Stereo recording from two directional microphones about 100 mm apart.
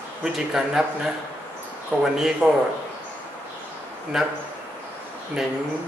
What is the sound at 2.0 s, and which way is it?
Speech, 5° right (ahead or behind).